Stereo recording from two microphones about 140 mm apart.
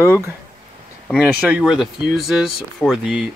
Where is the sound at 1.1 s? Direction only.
5° right (ahead or behind).